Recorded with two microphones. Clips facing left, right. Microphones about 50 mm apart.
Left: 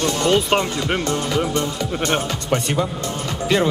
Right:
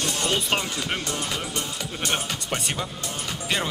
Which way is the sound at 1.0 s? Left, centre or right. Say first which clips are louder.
Left 9 dB; centre.